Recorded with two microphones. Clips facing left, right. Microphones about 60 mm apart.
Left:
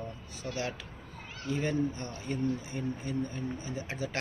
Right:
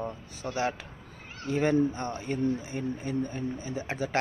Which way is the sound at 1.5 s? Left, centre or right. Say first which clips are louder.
Right 6 dB; right.